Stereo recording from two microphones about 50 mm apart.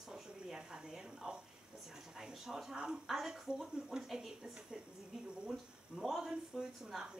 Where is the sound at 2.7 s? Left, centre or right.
Centre.